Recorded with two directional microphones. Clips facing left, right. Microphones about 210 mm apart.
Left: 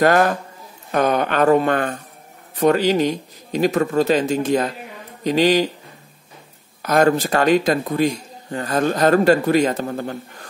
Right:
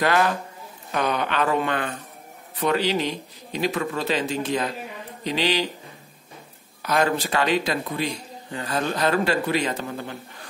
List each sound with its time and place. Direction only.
0.0 s speech: 45° left (ahead or behind)
6.8 s speech: 45° left (ahead or behind)